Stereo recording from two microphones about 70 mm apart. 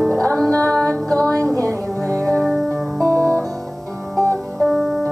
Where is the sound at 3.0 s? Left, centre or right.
Right.